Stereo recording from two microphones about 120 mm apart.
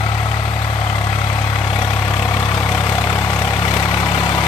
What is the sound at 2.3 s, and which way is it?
Vehicle, 35° left (ahead or behind).